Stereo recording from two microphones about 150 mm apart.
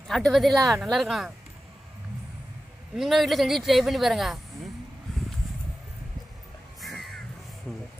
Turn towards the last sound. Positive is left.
turn(degrees=0)  # may be behind; listen again after turning